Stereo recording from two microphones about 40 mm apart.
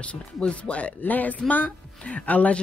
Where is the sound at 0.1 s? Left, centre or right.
Left.